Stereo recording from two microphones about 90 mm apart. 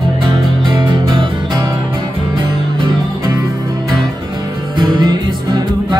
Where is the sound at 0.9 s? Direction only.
60° right (ahead or behind).